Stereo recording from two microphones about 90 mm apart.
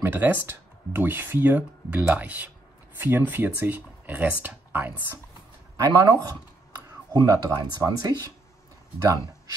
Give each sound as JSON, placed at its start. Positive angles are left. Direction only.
{"t": 0.0, "sound": "speech", "side_deg": -20}
{"t": 5.8, "sound": "speech", "side_deg": -40}